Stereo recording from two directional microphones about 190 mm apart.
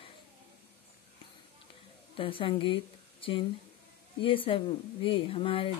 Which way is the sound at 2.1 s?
25° left (ahead or behind).